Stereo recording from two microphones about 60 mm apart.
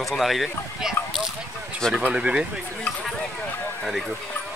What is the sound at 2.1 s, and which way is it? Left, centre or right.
Speech, centre.